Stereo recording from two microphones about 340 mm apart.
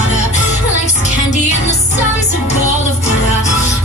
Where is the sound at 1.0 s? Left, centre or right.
Centre.